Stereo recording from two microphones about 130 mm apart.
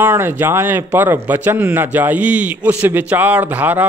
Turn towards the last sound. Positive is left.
turn(degrees=-15)  # may be behind; listen again after turning